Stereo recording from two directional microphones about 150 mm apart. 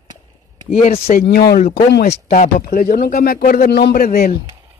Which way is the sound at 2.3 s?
60° left (ahead or behind).